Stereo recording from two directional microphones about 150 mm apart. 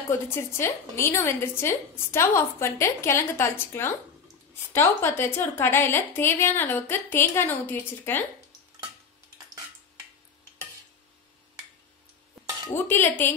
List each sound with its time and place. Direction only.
0.1 s a woman's voice: 15° left (ahead or behind)
12.7 s a woman's voice: 15° left (ahead or behind)